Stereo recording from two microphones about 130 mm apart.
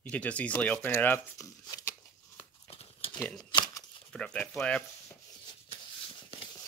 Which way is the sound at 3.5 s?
30° left (ahead or behind).